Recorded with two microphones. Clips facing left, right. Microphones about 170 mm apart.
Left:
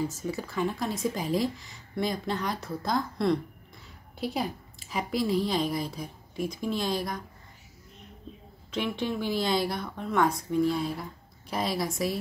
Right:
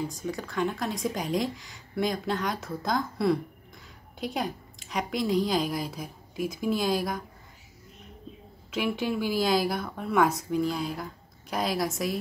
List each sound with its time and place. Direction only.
0.0 s speech: 5° left (ahead or behind)
8.7 s speech: 5° right (ahead or behind)